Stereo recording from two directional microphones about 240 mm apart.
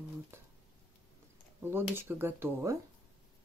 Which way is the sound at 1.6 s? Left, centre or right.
Centre.